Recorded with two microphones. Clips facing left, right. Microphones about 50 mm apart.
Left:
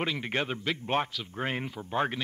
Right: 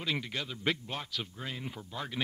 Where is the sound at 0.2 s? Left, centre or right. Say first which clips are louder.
Left 5 dB; left.